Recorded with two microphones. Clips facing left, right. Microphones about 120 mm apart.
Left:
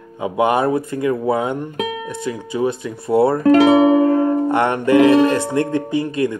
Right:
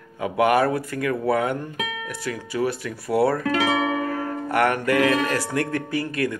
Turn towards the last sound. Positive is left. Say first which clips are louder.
# left 6 dB
turn(degrees=20)  # may be behind; listen again after turning